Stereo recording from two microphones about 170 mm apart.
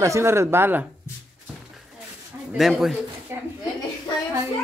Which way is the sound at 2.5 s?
Centre (ahead or behind).